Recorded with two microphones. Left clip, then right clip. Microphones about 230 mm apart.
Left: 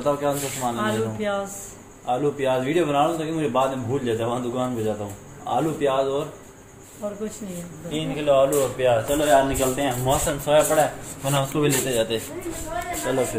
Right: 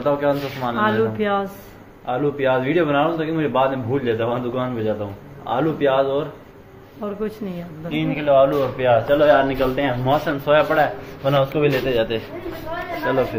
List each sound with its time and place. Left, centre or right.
0.0 s a man's voice: centre
0.7 s speech: right
2.0 s a man's voice: centre
7.2 s speech: right
7.9 s a man's voice: centre